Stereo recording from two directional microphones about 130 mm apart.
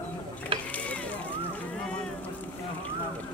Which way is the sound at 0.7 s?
10° left (ahead or behind).